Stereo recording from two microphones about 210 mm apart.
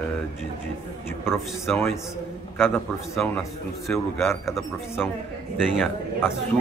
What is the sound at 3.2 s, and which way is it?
Speech, 5° left (ahead or behind).